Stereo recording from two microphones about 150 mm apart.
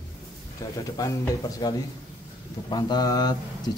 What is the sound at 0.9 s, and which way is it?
Speech, 25° left (ahead or behind).